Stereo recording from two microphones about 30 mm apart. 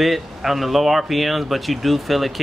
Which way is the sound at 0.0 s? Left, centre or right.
Centre.